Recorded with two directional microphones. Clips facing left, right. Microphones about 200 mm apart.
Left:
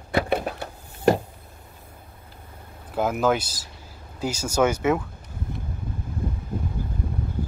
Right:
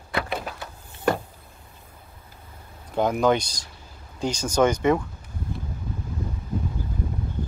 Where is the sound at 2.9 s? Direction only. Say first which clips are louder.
Right 1 dB; 5° left (ahead or behind).